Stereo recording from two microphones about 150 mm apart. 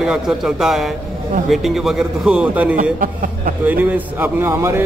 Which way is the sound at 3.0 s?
65° right (ahead or behind).